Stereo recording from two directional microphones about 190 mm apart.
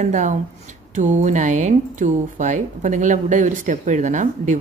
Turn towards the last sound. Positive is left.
turn(degrees=-40)  # may be behind; listen again after turning